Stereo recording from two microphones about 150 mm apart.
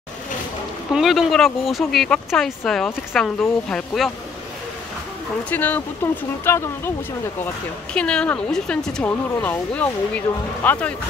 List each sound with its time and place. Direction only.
0.9 s speech: centre (ahead or behind)
5.5 s speech: 10° left (ahead or behind)
7.9 s speech: 5° left (ahead or behind)